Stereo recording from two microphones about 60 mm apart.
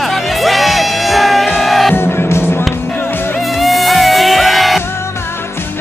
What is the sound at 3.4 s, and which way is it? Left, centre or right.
Music, centre.